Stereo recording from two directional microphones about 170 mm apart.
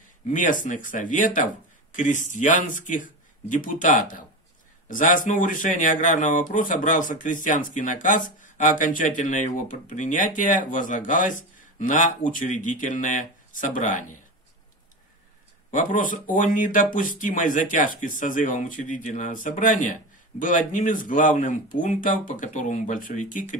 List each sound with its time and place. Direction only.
0.3 s speech: 50° left (ahead or behind)
15.7 s speech: 50° left (ahead or behind)